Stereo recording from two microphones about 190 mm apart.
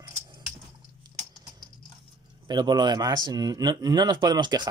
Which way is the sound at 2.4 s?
20° right (ahead or behind).